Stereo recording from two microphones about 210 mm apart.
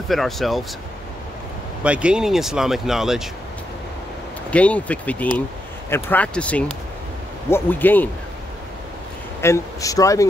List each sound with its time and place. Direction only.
0.1 s speech: centre (ahead or behind)
1.8 s speech: 5° right (ahead or behind)
4.5 s speech: 5° left (ahead or behind)
9.4 s speech: 15° left (ahead or behind)